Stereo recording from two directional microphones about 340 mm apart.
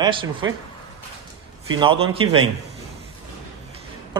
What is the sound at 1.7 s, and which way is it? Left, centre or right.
Speech, centre.